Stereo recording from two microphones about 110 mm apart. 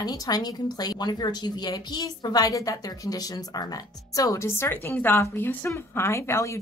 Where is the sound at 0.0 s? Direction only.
35° left (ahead or behind).